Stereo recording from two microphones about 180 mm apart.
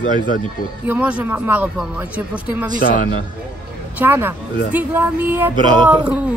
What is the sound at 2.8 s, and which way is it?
Speech, 55° left (ahead or behind).